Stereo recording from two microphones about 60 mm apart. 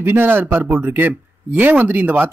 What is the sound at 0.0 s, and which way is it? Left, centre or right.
Speech, right.